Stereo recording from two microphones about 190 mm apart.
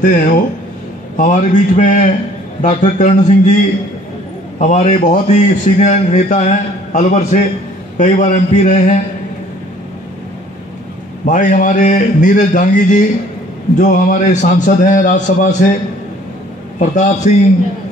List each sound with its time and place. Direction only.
0.0 s a man's voice: 40° left (ahead or behind)
4.6 s a man's voice: 40° left (ahead or behind)
11.2 s a man's voice: 40° left (ahead or behind)
16.8 s a man's voice: 40° left (ahead or behind)